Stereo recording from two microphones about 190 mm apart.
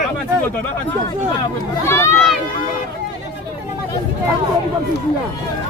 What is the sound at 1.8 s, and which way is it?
Speech, 15° left (ahead or behind).